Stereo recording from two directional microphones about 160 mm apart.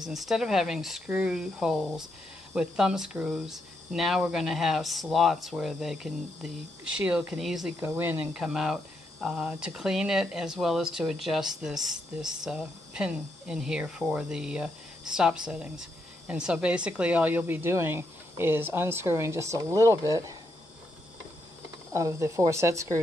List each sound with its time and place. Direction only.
0.0 s speech: centre (ahead or behind)
7.8 s speech: 15° right (ahead or behind)
8.4 s speech: 5° right (ahead or behind); by 20.3 s 20° right (ahead or behind)
21.9 s speech: 20° right (ahead or behind)